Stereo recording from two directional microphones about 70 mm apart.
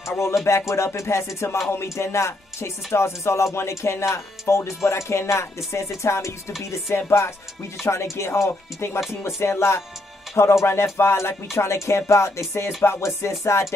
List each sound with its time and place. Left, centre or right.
0.0 s music: left
0.5 s speech: left
6.0 s music: left
7.0 s speech: left
13.4 s music: left